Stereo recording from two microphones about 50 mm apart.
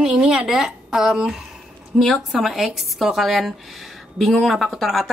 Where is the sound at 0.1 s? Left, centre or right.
Centre.